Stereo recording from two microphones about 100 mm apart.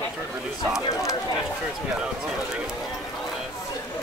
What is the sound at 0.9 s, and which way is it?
Speech, 35° left (ahead or behind).